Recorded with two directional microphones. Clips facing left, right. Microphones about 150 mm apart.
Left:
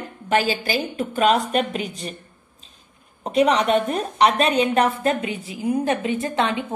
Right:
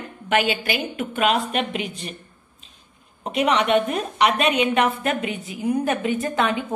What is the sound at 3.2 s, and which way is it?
A woman's voice, 35° left (ahead or behind).